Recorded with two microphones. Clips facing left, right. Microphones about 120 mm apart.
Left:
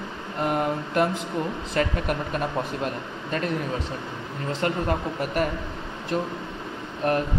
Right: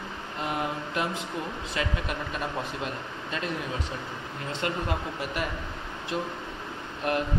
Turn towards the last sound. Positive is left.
turn(degrees=40)  # may be behind; listen again after turning